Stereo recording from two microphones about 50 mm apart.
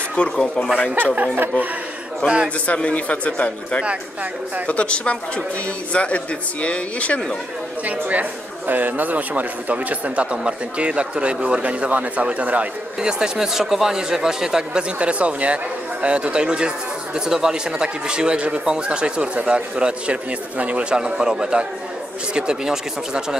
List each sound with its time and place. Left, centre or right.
0.2 s a man's voice: left
1.0 s speech: right
2.2 s a man's voice: left
8.1 s a man's voice: right
13.0 s speech: centre